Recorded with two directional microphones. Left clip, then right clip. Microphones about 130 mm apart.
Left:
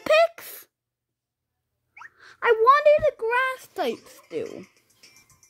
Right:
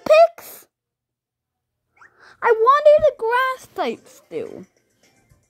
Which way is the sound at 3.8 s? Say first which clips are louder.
Right 2 dB; 15° right (ahead or behind).